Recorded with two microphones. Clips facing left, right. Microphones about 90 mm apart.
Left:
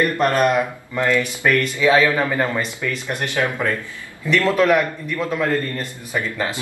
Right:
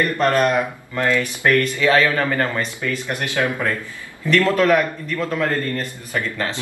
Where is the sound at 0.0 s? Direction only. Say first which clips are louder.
Even; 15° left (ahead or behind).